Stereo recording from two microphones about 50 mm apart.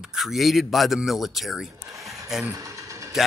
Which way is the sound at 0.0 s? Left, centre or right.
Centre.